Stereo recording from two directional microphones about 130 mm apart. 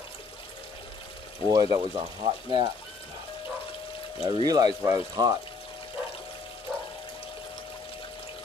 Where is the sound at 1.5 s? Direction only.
35° right (ahead or behind).